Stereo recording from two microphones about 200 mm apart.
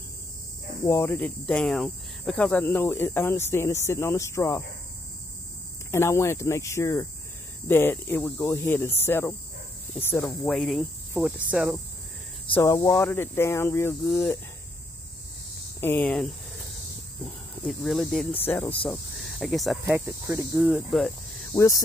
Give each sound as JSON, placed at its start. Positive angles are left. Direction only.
{"t": 0.8, "sound": "speech", "side_deg": 15}
{"t": 5.9, "sound": "speech", "side_deg": 15}
{"t": 9.9, "sound": "cricket", "side_deg": 5}
{"t": 12.5, "sound": "speech", "side_deg": 20}
{"t": 15.8, "sound": "speech", "side_deg": 10}
{"t": 19.9, "sound": "cricket", "side_deg": -15}
{"t": 20.6, "sound": "cricket", "side_deg": 0}
{"t": 21.5, "sound": "speech", "side_deg": 15}